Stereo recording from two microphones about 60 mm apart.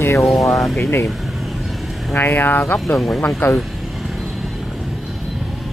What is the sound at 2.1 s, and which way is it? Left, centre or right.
Speech, left.